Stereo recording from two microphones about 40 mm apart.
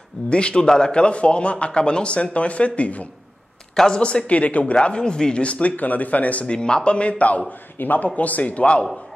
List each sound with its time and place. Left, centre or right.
0.3 s a man's voice: left
3.7 s speech: centre
4.3 s speech: left
4.7 s a man's voice: left
5.4 s speech: left
6.4 s a man's voice: left
7.8 s a man's voice: left